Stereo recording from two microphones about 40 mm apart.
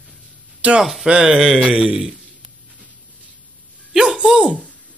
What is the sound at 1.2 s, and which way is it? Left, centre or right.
Speech, centre.